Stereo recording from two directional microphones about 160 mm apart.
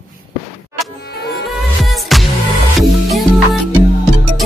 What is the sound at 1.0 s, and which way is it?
Music, 80° left.